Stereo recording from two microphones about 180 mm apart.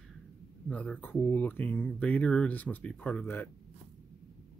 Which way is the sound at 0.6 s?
5° left (ahead or behind).